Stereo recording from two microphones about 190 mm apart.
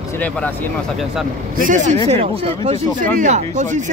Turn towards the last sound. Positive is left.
turn(degrees=-40)  # may be behind; listen again after turning